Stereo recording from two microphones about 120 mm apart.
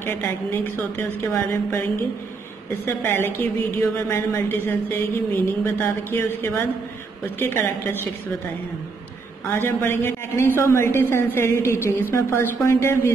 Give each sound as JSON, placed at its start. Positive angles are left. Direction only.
{"t": 0.0, "sound": "a woman's voice", "side_deg": 20}
{"t": 2.8, "sound": "a woman's voice", "side_deg": 20}
{"t": 9.5, "sound": "a woman's voice", "side_deg": 20}